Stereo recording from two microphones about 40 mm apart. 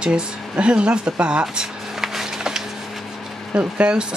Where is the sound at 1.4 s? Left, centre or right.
Centre.